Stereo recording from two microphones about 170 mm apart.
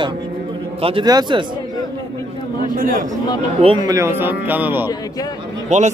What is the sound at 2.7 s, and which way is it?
Speech, 55° right (ahead or behind).